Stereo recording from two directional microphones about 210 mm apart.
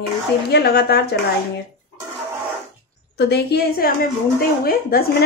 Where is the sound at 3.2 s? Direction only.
50° left (ahead or behind).